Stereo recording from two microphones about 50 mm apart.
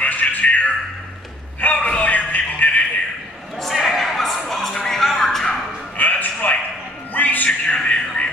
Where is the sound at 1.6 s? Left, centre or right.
Left.